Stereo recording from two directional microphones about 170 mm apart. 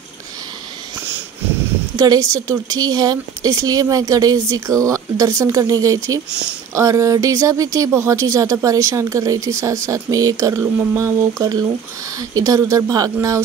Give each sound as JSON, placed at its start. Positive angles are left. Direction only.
{"t": 2.0, "sound": "speech", "side_deg": -20}